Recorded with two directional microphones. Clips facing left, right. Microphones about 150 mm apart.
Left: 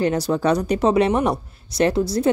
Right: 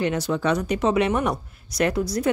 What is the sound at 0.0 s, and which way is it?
A woman's voice, 35° left (ahead or behind).